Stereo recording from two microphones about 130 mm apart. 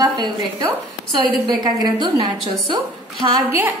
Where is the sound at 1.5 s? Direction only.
30° right (ahead or behind).